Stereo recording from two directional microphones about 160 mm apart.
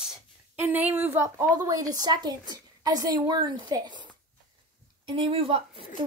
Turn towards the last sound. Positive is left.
turn(degrees=-35)  # may be behind; listen again after turning